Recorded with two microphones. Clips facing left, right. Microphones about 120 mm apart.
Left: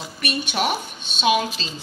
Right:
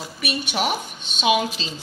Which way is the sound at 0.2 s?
10° right (ahead or behind).